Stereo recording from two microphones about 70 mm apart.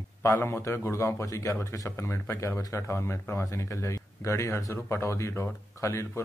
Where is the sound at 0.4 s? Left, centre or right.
Left.